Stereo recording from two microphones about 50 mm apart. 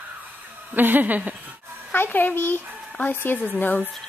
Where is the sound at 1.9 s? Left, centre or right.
Left.